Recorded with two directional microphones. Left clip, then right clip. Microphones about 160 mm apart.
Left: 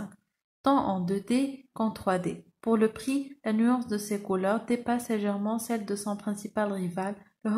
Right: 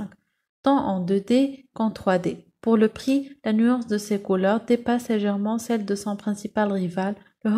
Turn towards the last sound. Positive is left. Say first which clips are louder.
# right 6 dB
turn(degrees=-30)  # may be behind; listen again after turning